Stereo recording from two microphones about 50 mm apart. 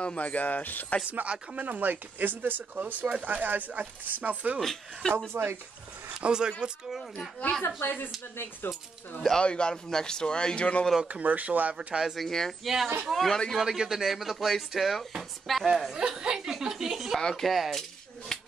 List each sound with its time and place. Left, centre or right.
0.0 s speech: left
1.1 s speech: right
4.6 s speech: centre
5.3 s speech: right
6.2 s speech: centre
6.9 s speech: centre
7.6 s speech: left
9.4 s speech: centre
11.1 s speech: right
12.2 s speech: centre
12.6 s speech: centre
16.0 s a woman's voice: centre
17.2 s speech: centre
18.3 s a sound: centre